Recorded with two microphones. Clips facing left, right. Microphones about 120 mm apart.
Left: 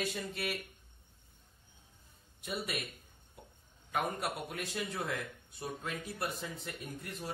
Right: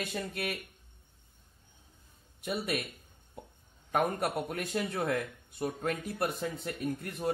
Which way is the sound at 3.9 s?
55° right (ahead or behind).